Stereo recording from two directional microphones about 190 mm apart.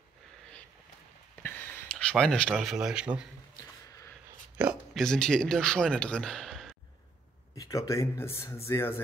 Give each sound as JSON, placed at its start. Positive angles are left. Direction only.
{"t": 1.4, "sound": "speech", "side_deg": 10}
{"t": 3.5, "sound": "a sound", "side_deg": 15}
{"t": 4.6, "sound": "speech", "side_deg": 0}
{"t": 7.5, "sound": "speech", "side_deg": 20}